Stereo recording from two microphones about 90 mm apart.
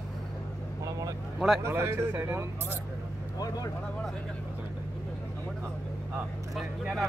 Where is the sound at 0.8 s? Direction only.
45° right (ahead or behind).